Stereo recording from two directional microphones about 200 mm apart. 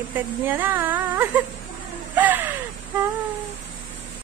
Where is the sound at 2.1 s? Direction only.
10° right (ahead or behind).